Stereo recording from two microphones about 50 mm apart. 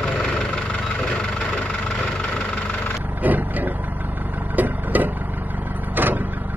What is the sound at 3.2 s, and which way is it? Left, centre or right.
Vehicle, right.